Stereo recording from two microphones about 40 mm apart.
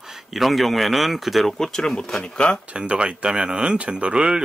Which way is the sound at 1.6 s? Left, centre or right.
Centre.